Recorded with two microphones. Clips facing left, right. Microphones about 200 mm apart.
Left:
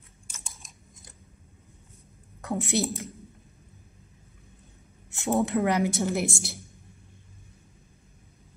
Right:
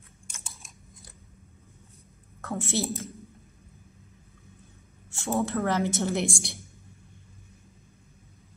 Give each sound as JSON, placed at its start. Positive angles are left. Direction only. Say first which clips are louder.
{"t": 2.4, "sound": "a woman's voice", "louder": "left 2 dB", "side_deg": 15}
{"t": 5.1, "sound": "a woman's voice", "louder": "left 3 dB", "side_deg": 20}
{"t": 6.1, "sound": "a woman's voice", "louder": "even", "side_deg": 0}